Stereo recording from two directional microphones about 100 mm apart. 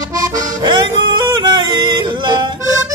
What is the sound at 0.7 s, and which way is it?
Yodeling, 50° right (ahead or behind).